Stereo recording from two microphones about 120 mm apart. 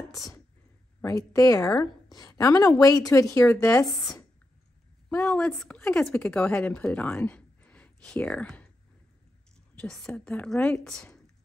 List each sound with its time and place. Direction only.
1.0 s a woman's voice: 25° left (ahead or behind)
3.8 s speech: centre (ahead or behind)
5.1 s a woman's voice: 15° left (ahead or behind)
5.4 s speech: 5° left (ahead or behind)
9.8 s a woman's voice: 5° left (ahead or behind)